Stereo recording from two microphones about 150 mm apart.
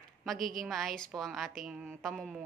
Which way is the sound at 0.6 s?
Centre (ahead or behind).